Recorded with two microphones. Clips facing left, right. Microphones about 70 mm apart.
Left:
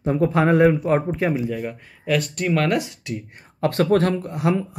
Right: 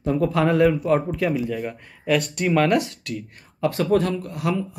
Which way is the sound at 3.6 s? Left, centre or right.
Left.